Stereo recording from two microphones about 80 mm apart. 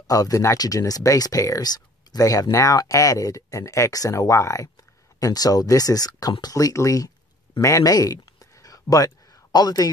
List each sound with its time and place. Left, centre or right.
0.0 s speech: left
5.2 s speech: left
6.5 s speech: left
7.6 s a sound: left
8.9 s a man's voice: left